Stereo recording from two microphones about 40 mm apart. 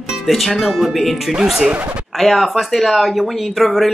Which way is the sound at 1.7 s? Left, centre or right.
Right.